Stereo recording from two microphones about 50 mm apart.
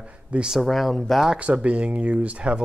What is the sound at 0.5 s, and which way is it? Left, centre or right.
Speech, centre.